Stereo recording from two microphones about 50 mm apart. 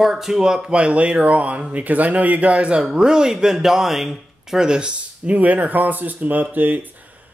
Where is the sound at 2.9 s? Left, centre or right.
Centre.